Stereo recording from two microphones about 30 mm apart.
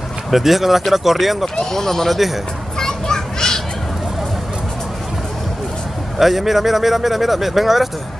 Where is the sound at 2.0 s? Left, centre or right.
Centre.